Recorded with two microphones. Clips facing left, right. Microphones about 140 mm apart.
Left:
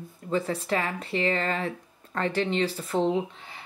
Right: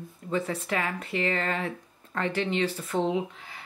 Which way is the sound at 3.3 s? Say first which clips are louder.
Left 1 dB; 25° left (ahead or behind).